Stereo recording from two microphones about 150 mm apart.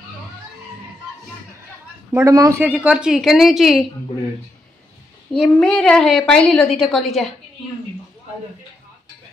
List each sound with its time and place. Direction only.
2.1 s speech: 20° right (ahead or behind)
2.6 s a woman's voice: 10° right (ahead or behind)
5.3 s a woman's voice: 5° left (ahead or behind)